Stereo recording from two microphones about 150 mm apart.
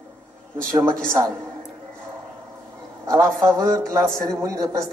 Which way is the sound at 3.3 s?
5° left (ahead or behind).